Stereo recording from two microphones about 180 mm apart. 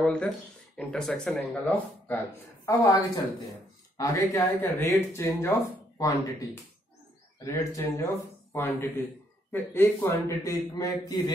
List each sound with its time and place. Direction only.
0.0 s speech: 5° left (ahead or behind)
2.6 s speech: 20° left (ahead or behind)
7.3 s speech: 15° left (ahead or behind)